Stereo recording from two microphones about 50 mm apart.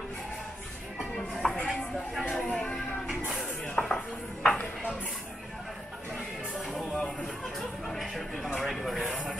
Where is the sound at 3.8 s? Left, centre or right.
Centre.